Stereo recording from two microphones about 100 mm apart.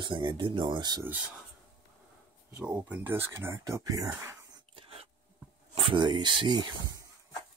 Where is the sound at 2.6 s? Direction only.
15° right (ahead or behind); by 4.4 s 30° right (ahead or behind).